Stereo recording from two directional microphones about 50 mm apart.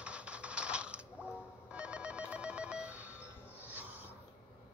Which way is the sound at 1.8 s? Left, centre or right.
Right.